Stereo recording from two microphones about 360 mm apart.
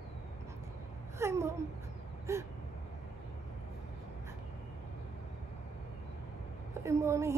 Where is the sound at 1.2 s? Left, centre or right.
Centre.